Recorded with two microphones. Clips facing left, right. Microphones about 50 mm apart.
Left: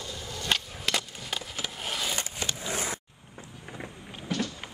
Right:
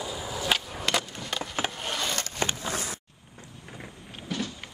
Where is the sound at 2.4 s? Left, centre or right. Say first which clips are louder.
Right 7 dB; right.